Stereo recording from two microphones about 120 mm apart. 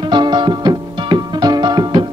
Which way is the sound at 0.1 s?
40° right (ahead or behind).